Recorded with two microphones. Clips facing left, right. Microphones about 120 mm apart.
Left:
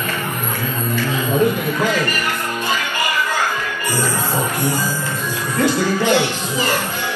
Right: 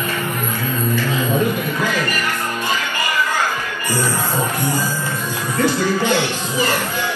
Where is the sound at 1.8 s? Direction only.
15° left (ahead or behind).